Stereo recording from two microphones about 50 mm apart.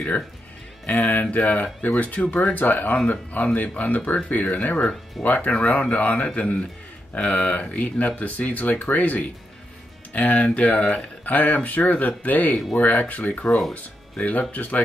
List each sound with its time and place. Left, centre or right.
0.8 s speech: left